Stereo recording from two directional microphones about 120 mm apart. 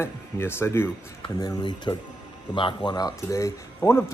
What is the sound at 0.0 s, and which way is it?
Speech, 20° left (ahead or behind).